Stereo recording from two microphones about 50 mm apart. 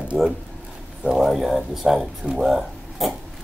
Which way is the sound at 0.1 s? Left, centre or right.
Centre.